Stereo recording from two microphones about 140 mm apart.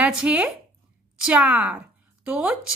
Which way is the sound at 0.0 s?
10° right (ahead or behind).